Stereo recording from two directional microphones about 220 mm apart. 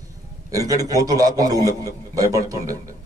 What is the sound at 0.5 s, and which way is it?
A man's voice, 15° right (ahead or behind).